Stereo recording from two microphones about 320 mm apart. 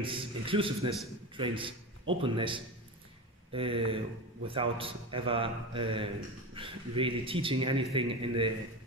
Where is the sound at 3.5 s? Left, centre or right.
Centre.